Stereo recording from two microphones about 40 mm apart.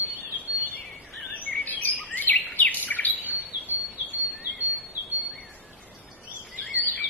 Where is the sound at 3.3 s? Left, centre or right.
Right.